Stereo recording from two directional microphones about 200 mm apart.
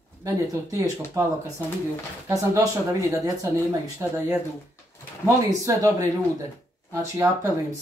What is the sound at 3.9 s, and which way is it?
Speech, 10° right (ahead or behind).